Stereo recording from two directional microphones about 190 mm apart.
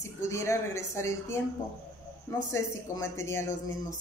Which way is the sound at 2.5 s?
15° left (ahead or behind).